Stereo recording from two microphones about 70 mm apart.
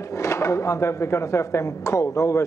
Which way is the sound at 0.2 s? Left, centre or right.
Left.